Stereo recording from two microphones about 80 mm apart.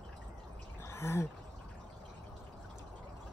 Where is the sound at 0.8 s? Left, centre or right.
Left.